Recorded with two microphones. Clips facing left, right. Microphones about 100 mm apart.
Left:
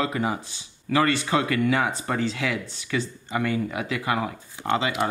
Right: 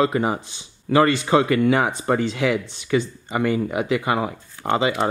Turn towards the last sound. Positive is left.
turn(degrees=-20)  # may be behind; listen again after turning